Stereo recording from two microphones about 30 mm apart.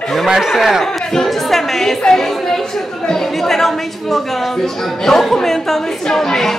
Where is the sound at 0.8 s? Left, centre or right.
Centre.